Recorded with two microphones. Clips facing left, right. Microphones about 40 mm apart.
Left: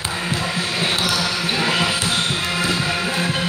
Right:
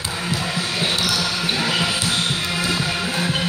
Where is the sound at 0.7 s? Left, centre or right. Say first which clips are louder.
Left 1 dB; centre.